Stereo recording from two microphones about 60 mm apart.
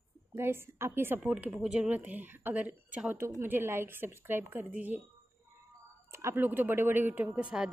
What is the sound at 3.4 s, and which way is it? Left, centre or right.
A woman's voice, right.